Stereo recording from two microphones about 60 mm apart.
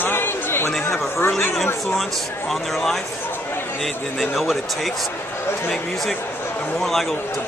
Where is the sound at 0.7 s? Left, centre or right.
Centre.